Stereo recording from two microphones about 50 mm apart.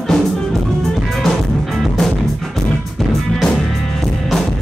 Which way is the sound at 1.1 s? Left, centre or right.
Centre.